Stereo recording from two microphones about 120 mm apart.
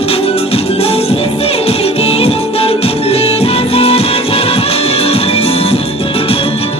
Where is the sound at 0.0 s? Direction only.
55° left (ahead or behind).